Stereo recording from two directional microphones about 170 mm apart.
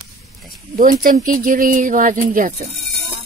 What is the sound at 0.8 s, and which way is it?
Speech, 55° right (ahead or behind).